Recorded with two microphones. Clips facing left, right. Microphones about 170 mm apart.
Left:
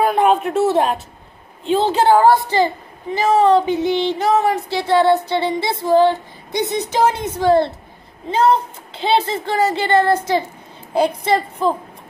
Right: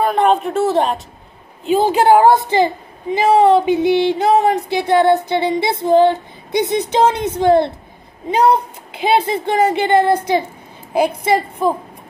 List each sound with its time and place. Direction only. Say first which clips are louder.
0.0 s a woman's voice: even; 5° left (ahead or behind)